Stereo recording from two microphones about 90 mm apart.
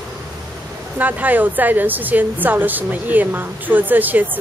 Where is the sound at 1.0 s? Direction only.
20° right (ahead or behind).